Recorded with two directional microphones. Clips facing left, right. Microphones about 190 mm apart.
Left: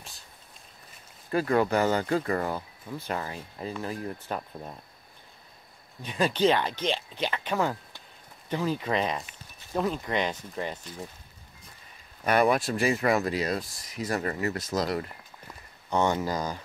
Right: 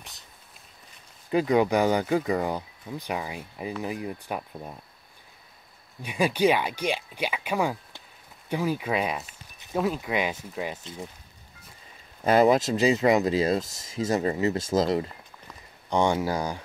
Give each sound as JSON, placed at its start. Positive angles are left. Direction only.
{"t": 1.3, "sound": "speech", "side_deg": -15}
{"t": 6.0, "sound": "speech", "side_deg": -10}
{"t": 12.2, "sound": "speech", "side_deg": -25}
{"t": 15.9, "sound": "speech", "side_deg": -10}